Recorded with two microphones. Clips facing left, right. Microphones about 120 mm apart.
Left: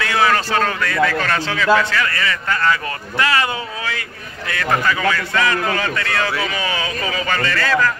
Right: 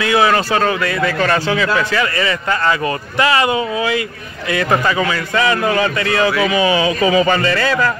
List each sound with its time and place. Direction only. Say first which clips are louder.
0.0 s a man's voice: right 3 dB; 10° right (ahead or behind)